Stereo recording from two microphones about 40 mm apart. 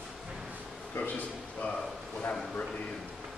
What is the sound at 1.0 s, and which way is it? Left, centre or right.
Speech, left.